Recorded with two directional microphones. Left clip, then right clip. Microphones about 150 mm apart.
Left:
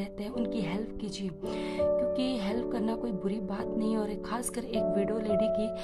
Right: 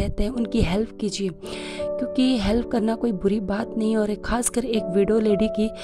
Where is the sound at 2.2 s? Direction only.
50° right (ahead or behind).